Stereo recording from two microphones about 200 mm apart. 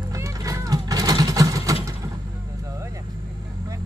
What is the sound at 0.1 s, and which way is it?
Mechanisms, 15° right (ahead or behind).